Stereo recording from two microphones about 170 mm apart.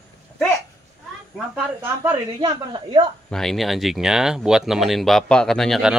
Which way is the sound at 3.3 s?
Centre (ahead or behind).